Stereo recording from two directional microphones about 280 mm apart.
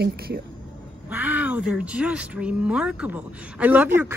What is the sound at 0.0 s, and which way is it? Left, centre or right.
Speech, right.